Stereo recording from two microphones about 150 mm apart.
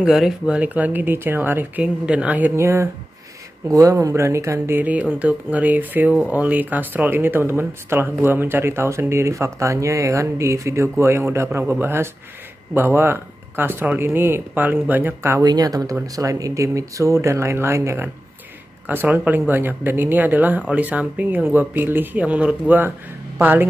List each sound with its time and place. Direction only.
0.0 s speech: 5° right (ahead or behind)